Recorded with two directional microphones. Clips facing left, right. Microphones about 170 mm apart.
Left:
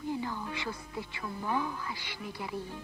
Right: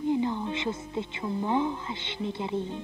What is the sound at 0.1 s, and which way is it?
Speech, 20° right (ahead or behind).